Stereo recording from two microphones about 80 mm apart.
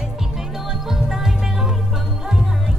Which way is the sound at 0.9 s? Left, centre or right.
Centre.